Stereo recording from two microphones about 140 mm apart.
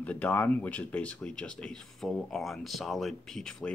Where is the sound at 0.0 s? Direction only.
10° left (ahead or behind).